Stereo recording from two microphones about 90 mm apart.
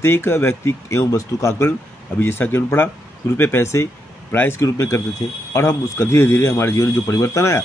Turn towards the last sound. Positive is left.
turn(degrees=35)  # may be behind; listen again after turning